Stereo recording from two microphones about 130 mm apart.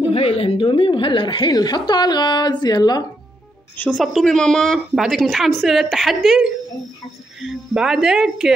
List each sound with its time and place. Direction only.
0.1 s a woman's voice: 50° left (ahead or behind); by 3.1 s 30° left (ahead or behind)
3.7 s a woman's voice: 15° left (ahead or behind)
4.0 s a woman's voice: centre (ahead or behind)